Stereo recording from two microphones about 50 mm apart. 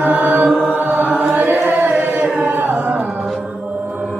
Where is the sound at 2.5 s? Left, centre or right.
Right.